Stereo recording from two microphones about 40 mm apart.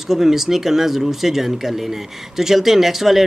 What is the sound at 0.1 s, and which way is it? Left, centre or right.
Speech, centre.